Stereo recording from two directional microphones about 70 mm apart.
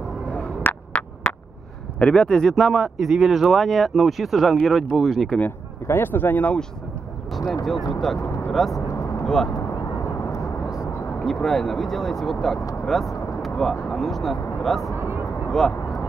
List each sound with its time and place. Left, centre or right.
1.0 s a sound: centre
2.0 s speech: centre
2.5 s speech: centre
5.4 s speech: left
7.9 s speech: centre
8.8 s vehicle: left
9.2 s speech: centre
9.6 s vehicle: left
11.2 s speech: centre
15.0 s vehicle: right
15.5 s speech: centre